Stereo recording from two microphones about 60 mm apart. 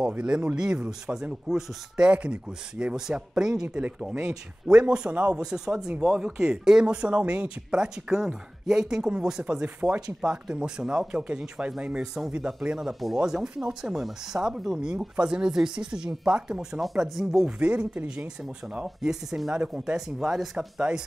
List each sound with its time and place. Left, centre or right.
0.1 s speech: centre
17.5 s speech: centre
18.9 s speech: centre